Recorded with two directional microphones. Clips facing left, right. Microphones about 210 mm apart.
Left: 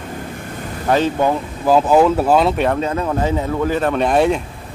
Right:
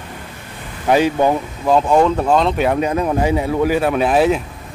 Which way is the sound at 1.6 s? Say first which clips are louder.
Left 1 dB; 5° left (ahead or behind).